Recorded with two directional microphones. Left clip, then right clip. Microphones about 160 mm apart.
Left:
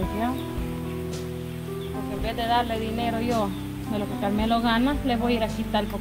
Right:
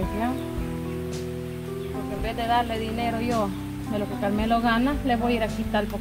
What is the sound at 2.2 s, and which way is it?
Speech, centre (ahead or behind).